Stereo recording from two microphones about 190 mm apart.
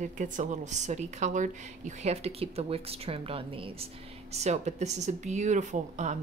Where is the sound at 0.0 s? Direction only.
40° right (ahead or behind).